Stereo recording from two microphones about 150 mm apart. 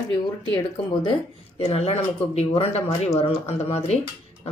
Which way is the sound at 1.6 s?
45° left (ahead or behind).